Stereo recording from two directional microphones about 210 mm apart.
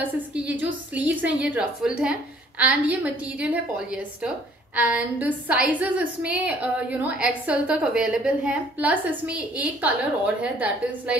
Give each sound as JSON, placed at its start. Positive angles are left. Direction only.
{"t": 0.0, "sound": "a woman's voice", "side_deg": -5}